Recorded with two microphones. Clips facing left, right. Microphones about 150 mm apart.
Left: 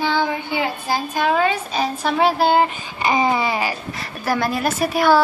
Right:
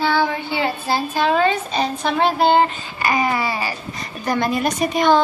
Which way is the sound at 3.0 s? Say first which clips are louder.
Left 1 dB; 25° left (ahead or behind).